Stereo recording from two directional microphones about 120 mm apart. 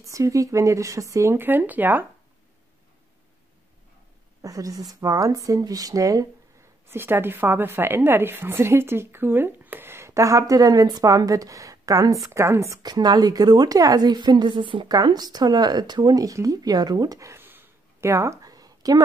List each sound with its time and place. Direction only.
0.0 s a woman's voice: 25° right (ahead or behind)
4.4 s a woman's voice: 30° right (ahead or behind)
6.9 s a woman's voice: 20° right (ahead or behind)